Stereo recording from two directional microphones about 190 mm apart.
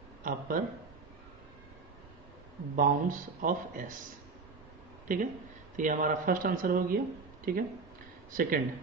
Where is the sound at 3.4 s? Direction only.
45° right (ahead or behind).